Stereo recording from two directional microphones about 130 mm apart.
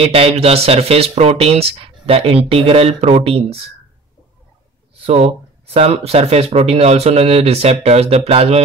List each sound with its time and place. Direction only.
0.1 s speech: 50° right (ahead or behind)
5.0 s speech: 50° right (ahead or behind)